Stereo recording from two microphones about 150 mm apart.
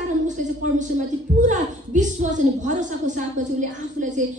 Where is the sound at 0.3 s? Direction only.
55° right (ahead or behind).